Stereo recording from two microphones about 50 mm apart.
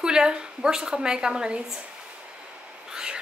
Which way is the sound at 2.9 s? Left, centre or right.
Centre.